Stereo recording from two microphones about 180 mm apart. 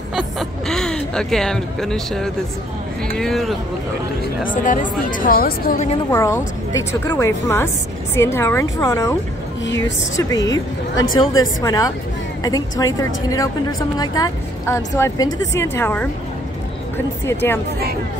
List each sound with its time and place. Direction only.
0.1 s a sound: centre (ahead or behind)
3.2 s speech: centre (ahead or behind)
4.6 s a woman's voice: 45° left (ahead or behind)
6.1 s a woman's voice: 15° left (ahead or behind)
10.1 s a woman's voice: 20° left (ahead or behind)
17.3 s a woman's voice: 10° left (ahead or behind)